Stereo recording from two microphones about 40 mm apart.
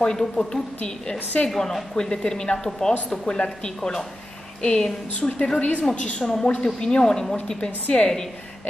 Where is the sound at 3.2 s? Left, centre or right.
Left.